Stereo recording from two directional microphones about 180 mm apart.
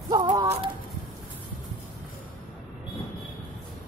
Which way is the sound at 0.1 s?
20° right (ahead or behind).